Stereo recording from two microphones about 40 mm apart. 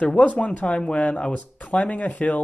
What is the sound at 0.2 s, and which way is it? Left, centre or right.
Speech, left.